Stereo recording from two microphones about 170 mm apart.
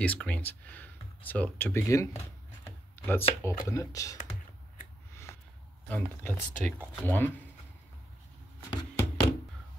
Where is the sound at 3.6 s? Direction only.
20° left (ahead or behind).